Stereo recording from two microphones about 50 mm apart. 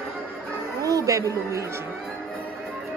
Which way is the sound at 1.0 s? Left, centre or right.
Right.